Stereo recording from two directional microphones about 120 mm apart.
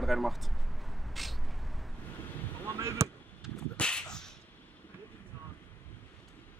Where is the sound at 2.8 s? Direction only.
25° right (ahead or behind).